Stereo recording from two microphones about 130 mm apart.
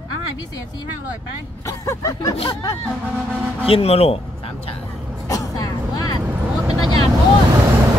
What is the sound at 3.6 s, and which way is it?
Speech, 50° left (ahead or behind).